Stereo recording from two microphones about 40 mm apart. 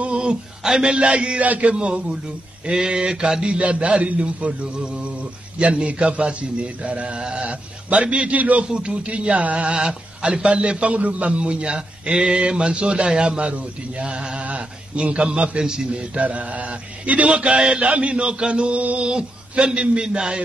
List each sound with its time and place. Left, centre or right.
0.0 s a sound: right
0.7 s a man's voice: right
1.4 s speech: right
1.7 s a man's voice: right
5.6 s a man's voice: right
8.6 s speech: right
9.8 s a man's voice: right
11.0 s a man's voice: right
15.6 s a man's voice: centre
15.9 s a man's voice: right